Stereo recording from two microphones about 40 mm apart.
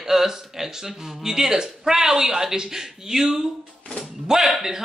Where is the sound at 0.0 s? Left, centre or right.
Centre.